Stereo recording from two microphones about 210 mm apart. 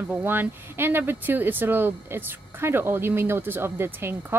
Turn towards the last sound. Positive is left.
turn(degrees=-10)  # may be behind; listen again after turning